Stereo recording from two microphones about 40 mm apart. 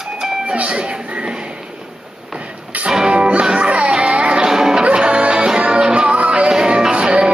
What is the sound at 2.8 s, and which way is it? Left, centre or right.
Music, right.